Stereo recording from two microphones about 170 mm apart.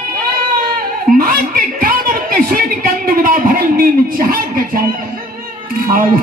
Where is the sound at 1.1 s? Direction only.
60° right (ahead or behind).